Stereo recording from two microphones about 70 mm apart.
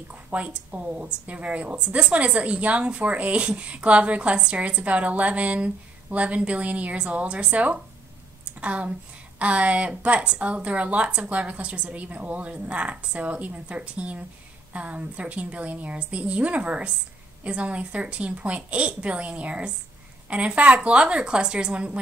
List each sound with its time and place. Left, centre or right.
0.1 s speech: right